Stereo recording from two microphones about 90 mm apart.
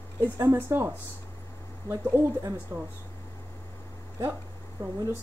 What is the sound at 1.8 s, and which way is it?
Speech, 30° left (ahead or behind).